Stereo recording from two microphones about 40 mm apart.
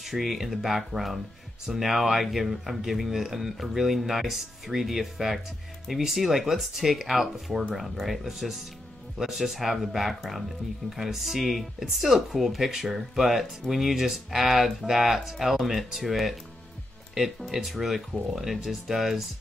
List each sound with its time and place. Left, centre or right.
0.1 s speech: centre